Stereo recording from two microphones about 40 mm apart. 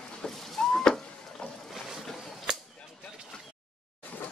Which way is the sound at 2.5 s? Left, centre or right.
Centre.